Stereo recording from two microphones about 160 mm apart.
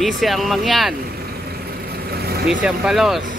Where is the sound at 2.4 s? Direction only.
5° right (ahead or behind).